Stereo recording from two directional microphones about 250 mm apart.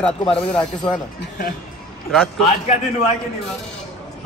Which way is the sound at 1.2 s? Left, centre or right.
Left.